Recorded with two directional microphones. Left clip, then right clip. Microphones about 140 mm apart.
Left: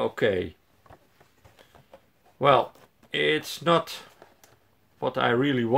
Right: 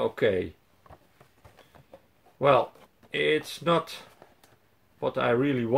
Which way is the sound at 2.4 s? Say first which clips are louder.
Left 1 dB; 35° left (ahead or behind).